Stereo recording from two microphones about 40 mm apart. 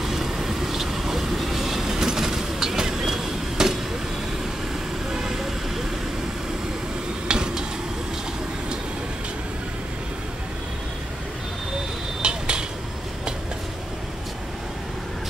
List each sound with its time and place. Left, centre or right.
0.0 s vehicle: centre
5.1 s vehicle: centre
7.2 s a sound: centre
12.2 s vehicle: right